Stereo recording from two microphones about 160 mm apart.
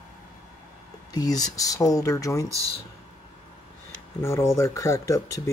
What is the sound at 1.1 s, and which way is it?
Speech, 25° left (ahead or behind).